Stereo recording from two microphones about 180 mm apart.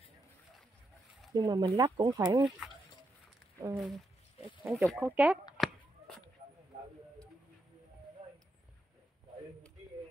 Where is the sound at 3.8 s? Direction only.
Centre (ahead or behind).